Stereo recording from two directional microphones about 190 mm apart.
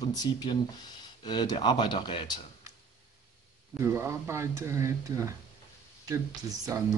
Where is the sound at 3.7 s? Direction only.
15° right (ahead or behind).